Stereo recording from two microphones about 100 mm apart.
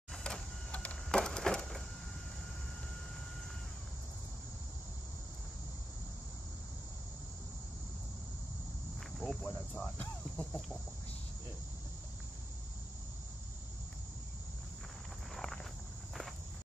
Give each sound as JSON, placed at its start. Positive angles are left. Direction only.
{"t": 0.1, "sound": "sliding door", "side_deg": 5}
{"t": 9.2, "sound": "cricket", "side_deg": 10}
{"t": 15.3, "sound": "walk", "side_deg": 0}